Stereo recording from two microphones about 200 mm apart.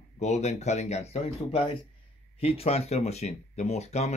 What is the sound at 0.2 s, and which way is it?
Speech, 35° left (ahead or behind).